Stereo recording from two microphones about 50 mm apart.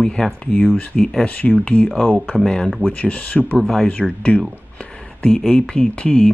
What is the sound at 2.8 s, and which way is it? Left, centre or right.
Speech, left.